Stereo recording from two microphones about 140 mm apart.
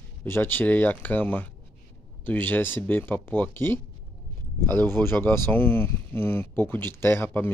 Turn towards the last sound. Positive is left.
turn(degrees=15)  # may be behind; listen again after turning